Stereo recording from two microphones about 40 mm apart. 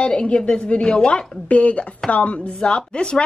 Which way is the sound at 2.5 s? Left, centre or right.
Left.